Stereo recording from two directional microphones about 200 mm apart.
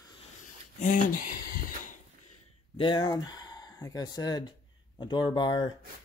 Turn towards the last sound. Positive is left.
turn(degrees=20)  # may be behind; listen again after turning